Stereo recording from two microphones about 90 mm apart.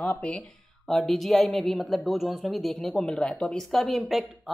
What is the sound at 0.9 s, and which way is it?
Speech, centre (ahead or behind).